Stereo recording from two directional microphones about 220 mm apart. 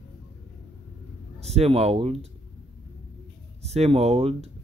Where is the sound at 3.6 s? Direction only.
30° right (ahead or behind).